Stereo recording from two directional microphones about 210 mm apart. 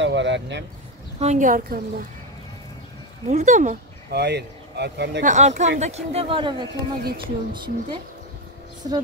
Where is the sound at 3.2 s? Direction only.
35° right (ahead or behind); by 5.2 s 55° right (ahead or behind).